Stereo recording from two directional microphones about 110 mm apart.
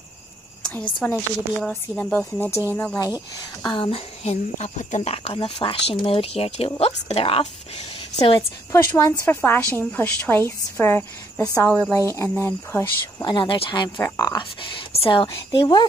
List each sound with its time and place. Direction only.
0.6 s a sound: 10° left (ahead or behind)
1.0 s a woman's voice: 5° left (ahead or behind)
3.6 s speech: 50° left (ahead or behind)
8.7 s a woman's voice: 25° left (ahead or behind)
13.2 s a woman's voice: 45° left (ahead or behind)
14.6 s speech: 60° left (ahead or behind)
15.2 s a woman's voice: 40° left (ahead or behind)